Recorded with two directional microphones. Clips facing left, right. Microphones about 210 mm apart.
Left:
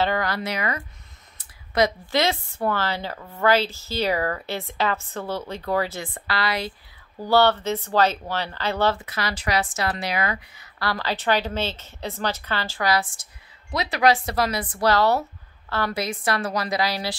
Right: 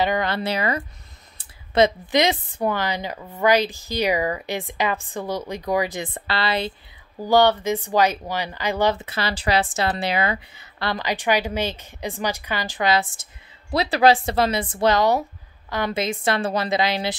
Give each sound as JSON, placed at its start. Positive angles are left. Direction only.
{"t": 0.0, "sound": "a woman's voice", "side_deg": -20}
{"t": 7.2, "sound": "speech", "side_deg": -15}
{"t": 9.0, "sound": "a woman's voice", "side_deg": -30}